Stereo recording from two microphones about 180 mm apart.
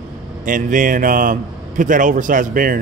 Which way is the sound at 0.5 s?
45° right (ahead or behind).